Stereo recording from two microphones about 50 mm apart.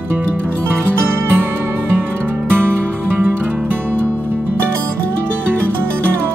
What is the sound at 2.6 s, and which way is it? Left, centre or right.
Music, right.